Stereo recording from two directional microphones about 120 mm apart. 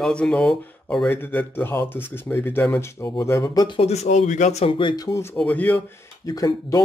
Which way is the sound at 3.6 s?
55° left (ahead or behind).